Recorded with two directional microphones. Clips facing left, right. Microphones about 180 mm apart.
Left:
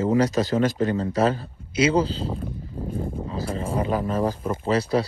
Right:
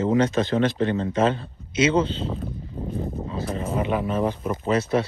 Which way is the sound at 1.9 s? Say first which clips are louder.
Even; 35° left (ahead or behind).